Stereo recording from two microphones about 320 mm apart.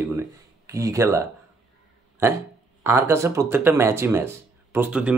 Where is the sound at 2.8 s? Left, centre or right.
Centre.